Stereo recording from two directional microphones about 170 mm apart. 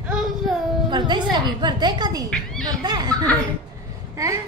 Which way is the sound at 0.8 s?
25° right (ahead or behind).